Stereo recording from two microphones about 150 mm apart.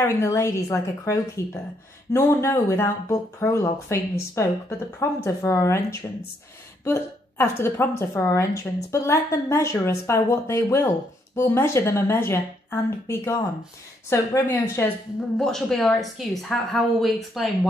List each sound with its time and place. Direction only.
0.0 s a woman's voice: 20° left (ahead or behind)
15.3 s speech: centre (ahead or behind)